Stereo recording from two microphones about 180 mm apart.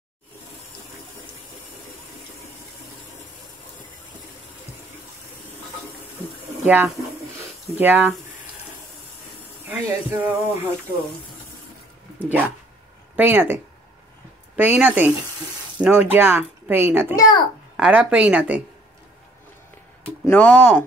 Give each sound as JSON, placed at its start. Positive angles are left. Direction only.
{"t": 6.6, "sound": "speech", "side_deg": -10}
{"t": 9.7, "sound": "speech", "side_deg": -10}
{"t": 12.2, "sound": "speech", "side_deg": -10}
{"t": 14.8, "sound": "speech", "side_deg": -10}
{"t": 17.1, "sound": "a child's voice", "side_deg": 20}
{"t": 17.7, "sound": "speech", "side_deg": -5}
{"t": 20.2, "sound": "speech", "side_deg": 10}